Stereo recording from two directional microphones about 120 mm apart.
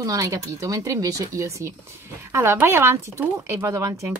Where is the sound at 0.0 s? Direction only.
30° right (ahead or behind).